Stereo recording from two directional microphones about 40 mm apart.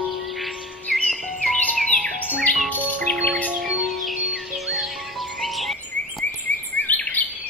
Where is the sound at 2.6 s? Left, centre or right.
Left.